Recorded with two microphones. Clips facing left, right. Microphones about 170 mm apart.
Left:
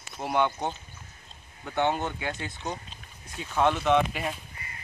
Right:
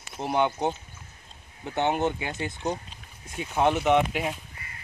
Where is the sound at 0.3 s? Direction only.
20° right (ahead or behind).